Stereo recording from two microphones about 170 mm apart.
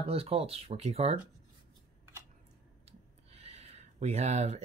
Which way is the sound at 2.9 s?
35° right (ahead or behind).